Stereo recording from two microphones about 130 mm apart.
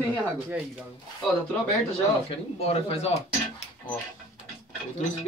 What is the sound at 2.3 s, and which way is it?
Speech, 50° left (ahead or behind).